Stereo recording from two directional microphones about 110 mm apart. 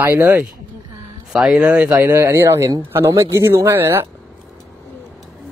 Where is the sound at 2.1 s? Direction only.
25° right (ahead or behind).